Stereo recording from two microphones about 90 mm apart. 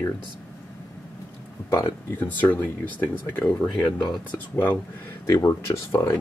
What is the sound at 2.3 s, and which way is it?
Speech, 20° left (ahead or behind).